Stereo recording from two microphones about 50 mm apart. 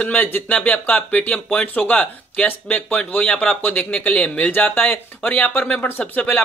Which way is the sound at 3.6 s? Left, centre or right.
Left.